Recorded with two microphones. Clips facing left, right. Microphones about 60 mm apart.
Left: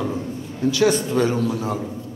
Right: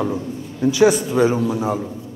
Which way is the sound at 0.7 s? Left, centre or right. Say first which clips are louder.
Right 3 dB; centre.